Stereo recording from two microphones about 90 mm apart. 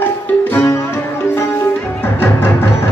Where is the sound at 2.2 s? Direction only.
25° left (ahead or behind).